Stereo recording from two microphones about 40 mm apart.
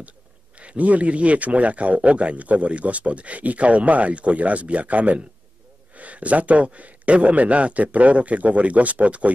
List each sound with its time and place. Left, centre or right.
0.6 s speech: right